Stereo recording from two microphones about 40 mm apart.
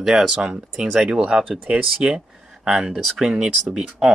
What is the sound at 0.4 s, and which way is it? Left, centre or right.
Speech, centre.